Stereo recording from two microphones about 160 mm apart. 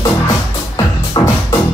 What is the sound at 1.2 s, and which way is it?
Music, 25° left (ahead or behind).